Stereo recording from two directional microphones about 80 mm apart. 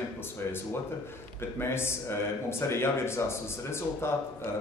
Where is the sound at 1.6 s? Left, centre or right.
Left.